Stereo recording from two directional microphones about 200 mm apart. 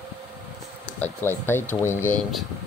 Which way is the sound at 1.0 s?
10° left (ahead or behind).